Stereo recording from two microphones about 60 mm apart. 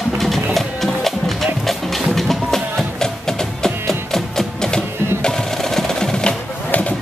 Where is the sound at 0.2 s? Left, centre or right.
Centre.